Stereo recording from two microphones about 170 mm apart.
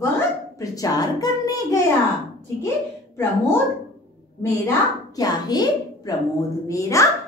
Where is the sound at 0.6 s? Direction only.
20° left (ahead or behind).